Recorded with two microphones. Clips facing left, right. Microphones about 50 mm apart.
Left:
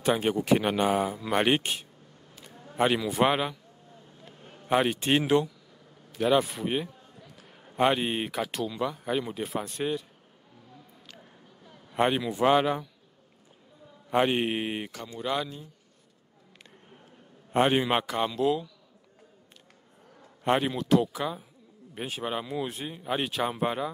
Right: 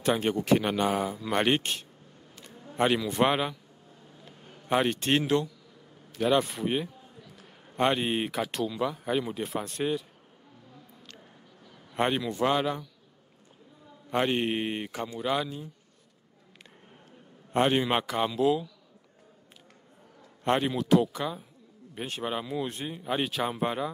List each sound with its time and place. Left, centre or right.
0.0 s a man's voice: centre
4.6 s speech: centre
6.1 s speech: centre
11.9 s speech: centre
12.4 s a man's voice: centre
14.1 s speech: centre
14.9 s speech: right
15.1 s speech: centre
17.5 s speech: centre
20.4 s speech: centre